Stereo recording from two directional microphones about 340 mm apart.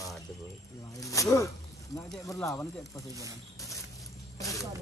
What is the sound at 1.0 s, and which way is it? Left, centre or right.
Speech, centre.